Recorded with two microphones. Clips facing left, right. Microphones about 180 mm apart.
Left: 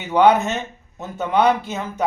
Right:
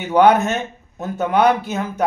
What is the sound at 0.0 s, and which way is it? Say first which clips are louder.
Speech: right 2 dB; 10° right (ahead or behind).